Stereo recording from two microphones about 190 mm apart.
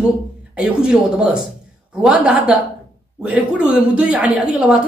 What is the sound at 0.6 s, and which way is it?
Speech, 5° right (ahead or behind).